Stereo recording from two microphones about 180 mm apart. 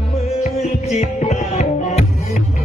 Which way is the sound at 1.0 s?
40° left (ahead or behind).